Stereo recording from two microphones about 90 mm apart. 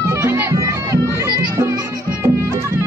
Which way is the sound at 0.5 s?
35° right (ahead or behind).